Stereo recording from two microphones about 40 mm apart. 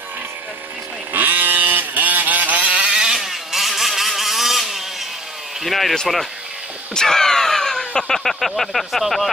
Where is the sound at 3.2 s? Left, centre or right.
Centre.